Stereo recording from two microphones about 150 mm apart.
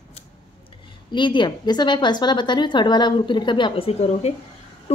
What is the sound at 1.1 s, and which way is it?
Speech, 30° left (ahead or behind).